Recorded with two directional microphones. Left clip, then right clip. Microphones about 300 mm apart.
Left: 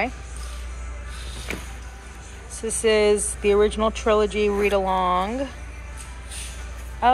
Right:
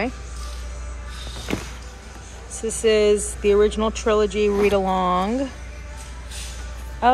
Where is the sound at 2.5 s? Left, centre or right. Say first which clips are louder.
Right 1 dB; centre.